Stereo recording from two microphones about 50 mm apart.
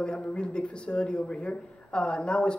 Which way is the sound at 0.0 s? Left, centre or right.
Centre.